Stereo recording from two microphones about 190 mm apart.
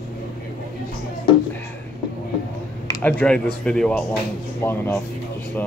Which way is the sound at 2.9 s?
10° left (ahead or behind).